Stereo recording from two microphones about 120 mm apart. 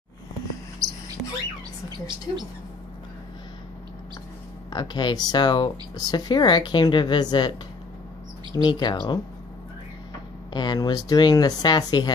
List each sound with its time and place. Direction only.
0.8 s a sound: 30° right (ahead or behind)
1.9 s a woman's voice: 35° right (ahead or behind)
4.6 s speech: 35° left (ahead or behind)
8.6 s speech: 40° left (ahead or behind)
10.5 s speech: 35° left (ahead or behind)